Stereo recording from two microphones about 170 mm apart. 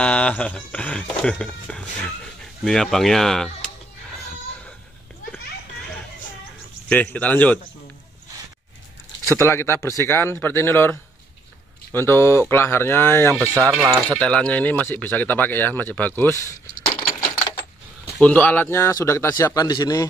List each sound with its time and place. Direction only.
0.0 s speech: 10° left (ahead or behind)
6.9 s speech: 10° left (ahead or behind)
9.2 s speech: 15° left (ahead or behind)
13.4 s speech: 15° right (ahead or behind)
14.2 s speech: 5° left (ahead or behind); by 20.1 s 25° left (ahead or behind)